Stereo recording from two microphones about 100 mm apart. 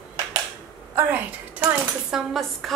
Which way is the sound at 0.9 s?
20° right (ahead or behind).